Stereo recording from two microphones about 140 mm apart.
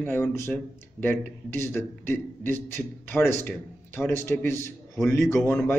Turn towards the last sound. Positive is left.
turn(degrees=15)  # may be behind; listen again after turning